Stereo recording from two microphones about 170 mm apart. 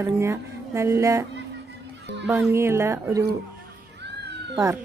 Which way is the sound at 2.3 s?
15° right (ahead or behind).